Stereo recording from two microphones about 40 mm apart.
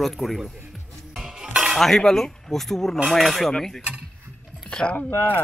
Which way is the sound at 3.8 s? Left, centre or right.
Right.